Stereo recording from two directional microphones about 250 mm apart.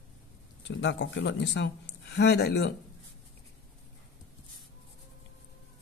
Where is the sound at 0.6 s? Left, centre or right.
Left.